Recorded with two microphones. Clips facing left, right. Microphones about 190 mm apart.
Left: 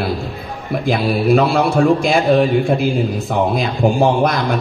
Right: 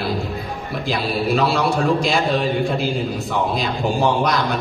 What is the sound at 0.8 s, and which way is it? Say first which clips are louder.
A man's voice: left 5 dB; 50° left (ahead or behind).